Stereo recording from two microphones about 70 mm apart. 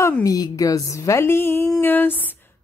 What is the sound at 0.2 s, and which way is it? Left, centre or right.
A woman's voice, left.